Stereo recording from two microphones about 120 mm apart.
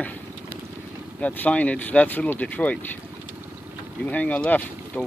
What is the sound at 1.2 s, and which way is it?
Speech, 10° left (ahead or behind).